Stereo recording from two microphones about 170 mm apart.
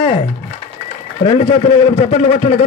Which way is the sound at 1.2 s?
40° left (ahead or behind).